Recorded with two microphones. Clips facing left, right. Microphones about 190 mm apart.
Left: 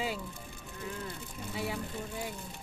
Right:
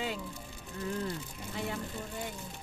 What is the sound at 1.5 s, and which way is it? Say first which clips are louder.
Speech: left 1 dB; 5° left (ahead or behind).